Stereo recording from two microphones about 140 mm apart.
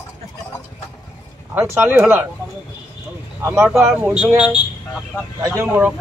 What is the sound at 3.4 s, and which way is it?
Speech, 20° right (ahead or behind).